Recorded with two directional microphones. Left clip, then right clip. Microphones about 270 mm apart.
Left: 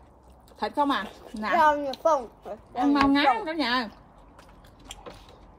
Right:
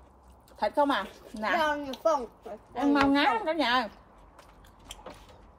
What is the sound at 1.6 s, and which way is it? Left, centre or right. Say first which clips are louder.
Speech: left 12 dB; centre.